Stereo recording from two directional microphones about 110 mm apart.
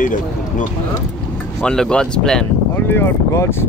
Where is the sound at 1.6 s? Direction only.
5° left (ahead or behind).